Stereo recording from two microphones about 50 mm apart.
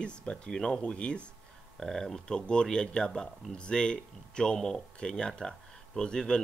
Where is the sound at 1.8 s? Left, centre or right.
Centre.